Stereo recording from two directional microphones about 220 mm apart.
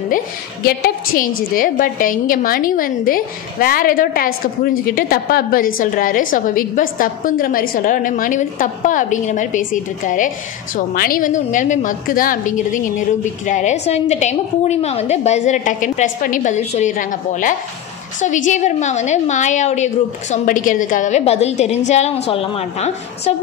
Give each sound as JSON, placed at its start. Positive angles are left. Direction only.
{"t": 0.7, "sound": "a woman's voice", "side_deg": 40}